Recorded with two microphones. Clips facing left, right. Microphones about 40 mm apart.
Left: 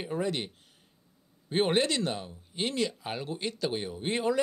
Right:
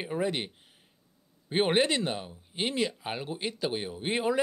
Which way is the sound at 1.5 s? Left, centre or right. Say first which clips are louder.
Right 1 dB; centre.